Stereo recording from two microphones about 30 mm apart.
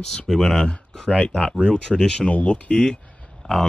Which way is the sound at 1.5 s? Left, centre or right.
Left.